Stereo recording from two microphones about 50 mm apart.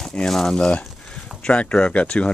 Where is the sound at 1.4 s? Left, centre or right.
Left.